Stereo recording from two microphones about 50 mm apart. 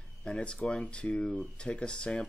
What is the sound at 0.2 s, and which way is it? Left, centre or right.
Speech, centre.